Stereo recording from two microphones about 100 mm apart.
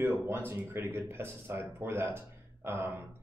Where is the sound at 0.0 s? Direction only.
20° right (ahead or behind).